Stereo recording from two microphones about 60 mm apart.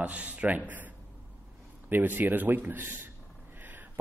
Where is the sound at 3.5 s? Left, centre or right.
Right.